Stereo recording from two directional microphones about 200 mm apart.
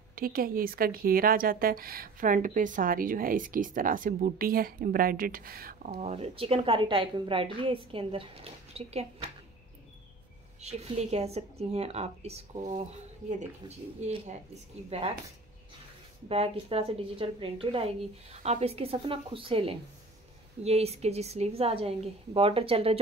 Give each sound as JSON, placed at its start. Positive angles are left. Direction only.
{"t": 0.1, "sound": "a woman's voice", "side_deg": -45}
{"t": 10.6, "sound": "a woman's voice", "side_deg": -35}
{"t": 14.0, "sound": "a woman's voice", "side_deg": -35}
{"t": 16.3, "sound": "a woman's voice", "side_deg": -30}